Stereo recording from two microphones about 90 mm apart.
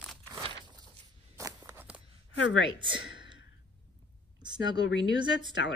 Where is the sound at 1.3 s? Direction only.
35° right (ahead or behind).